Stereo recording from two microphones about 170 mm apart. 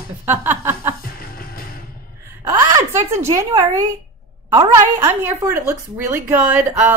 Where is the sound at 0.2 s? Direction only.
10° right (ahead or behind).